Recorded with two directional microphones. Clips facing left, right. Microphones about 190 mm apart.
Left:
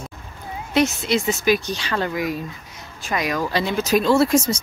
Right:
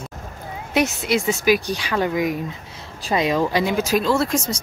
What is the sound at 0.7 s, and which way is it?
Speech, 10° right (ahead or behind).